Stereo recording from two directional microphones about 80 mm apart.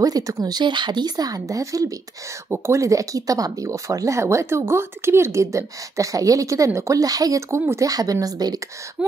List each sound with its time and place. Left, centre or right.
0.0 s speech: right
0.6 s speech: right
2.5 s speech: right
7.9 s speech: right